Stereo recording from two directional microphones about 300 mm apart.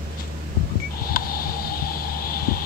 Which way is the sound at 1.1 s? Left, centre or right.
Left.